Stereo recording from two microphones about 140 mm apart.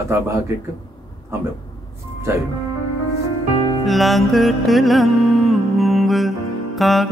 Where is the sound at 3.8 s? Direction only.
Centre (ahead or behind).